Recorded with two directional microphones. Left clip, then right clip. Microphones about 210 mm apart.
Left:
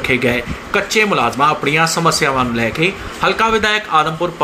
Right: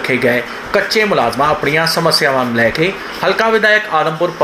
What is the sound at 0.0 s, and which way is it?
Speech, 25° left (ahead or behind).